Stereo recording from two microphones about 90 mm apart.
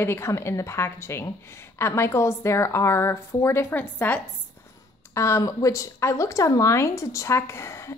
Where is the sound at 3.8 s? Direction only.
20° left (ahead or behind).